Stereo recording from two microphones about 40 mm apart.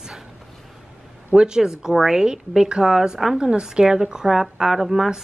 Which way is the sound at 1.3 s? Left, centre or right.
Right.